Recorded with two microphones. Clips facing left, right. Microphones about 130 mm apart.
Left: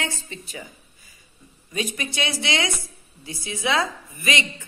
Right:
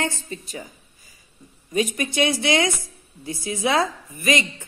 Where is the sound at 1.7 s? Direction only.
45° right (ahead or behind).